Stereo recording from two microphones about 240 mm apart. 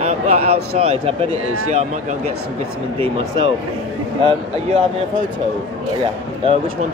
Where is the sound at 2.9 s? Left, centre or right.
Right.